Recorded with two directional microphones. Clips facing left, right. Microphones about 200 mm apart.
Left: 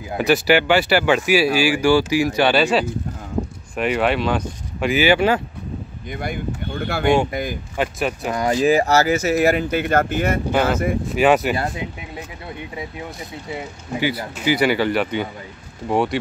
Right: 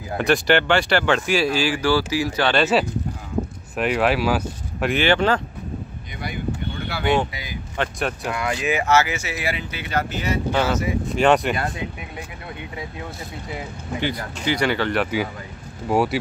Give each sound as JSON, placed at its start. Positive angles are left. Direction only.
{"t": 0.2, "sound": "speech", "side_deg": 5}
{"t": 2.6, "sound": "speech", "side_deg": -5}
{"t": 6.1, "sound": "speech", "side_deg": 50}
{"t": 7.7, "sound": "speech", "side_deg": 5}
{"t": 8.3, "sound": "speech", "side_deg": 35}
{"t": 11.1, "sound": "speech", "side_deg": 5}
{"t": 11.5, "sound": "speech", "side_deg": 20}
{"t": 13.9, "sound": "speech", "side_deg": 5}